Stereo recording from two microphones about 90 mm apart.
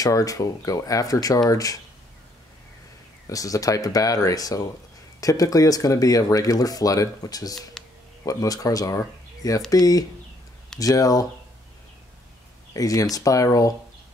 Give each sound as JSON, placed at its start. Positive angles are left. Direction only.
{"t": 0.0, "sound": "speech", "side_deg": 40}
{"t": 3.3, "sound": "speech", "side_deg": 40}
{"t": 12.7, "sound": "speech", "side_deg": 40}